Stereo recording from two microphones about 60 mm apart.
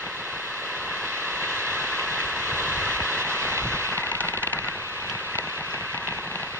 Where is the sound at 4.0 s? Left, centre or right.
Left.